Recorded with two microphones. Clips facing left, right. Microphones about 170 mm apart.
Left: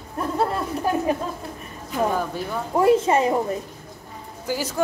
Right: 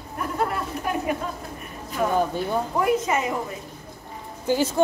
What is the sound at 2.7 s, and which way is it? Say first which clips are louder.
Speech: left 7 dB; 30° left (ahead or behind).